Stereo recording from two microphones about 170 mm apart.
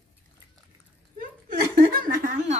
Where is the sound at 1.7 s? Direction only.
55° right (ahead or behind).